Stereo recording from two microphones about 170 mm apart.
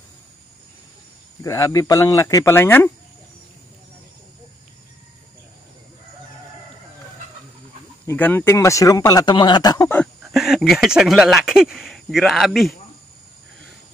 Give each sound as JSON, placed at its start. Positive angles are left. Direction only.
{"t": 1.4, "sound": "speech", "side_deg": 20}
{"t": 8.1, "sound": "speech", "side_deg": 10}
{"t": 10.2, "sound": "speech", "side_deg": 0}